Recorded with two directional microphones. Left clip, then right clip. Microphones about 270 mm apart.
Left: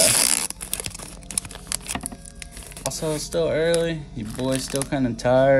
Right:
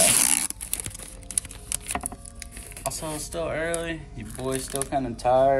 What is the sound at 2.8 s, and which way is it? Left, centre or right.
Speech, centre.